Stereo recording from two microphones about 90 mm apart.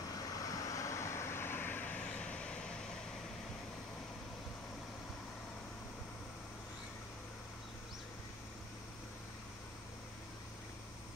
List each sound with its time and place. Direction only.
0.1 s vehicle: 40° left (ahead or behind); by 2.7 s 10° left (ahead or behind)